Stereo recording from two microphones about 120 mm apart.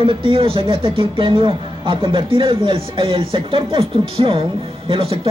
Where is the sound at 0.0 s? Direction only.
45° right (ahead or behind).